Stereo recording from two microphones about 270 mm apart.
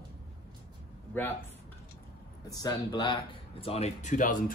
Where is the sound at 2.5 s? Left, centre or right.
Centre.